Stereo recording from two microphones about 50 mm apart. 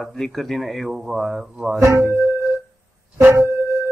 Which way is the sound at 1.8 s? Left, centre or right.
Right.